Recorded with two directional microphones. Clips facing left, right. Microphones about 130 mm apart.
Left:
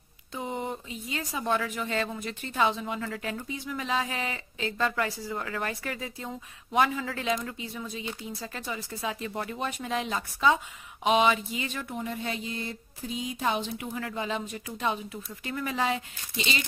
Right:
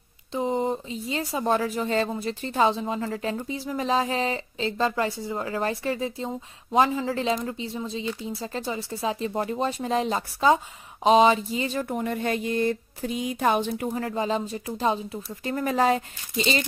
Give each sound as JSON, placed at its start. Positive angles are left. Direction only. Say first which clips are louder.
{"t": 0.3, "sound": "speech", "louder": "right 8 dB", "side_deg": -30}
{"t": 11.9, "sound": "speech", "louder": "right 7 dB", "side_deg": -55}
{"t": 15.4, "sound": "speech", "louder": "right 7 dB", "side_deg": -40}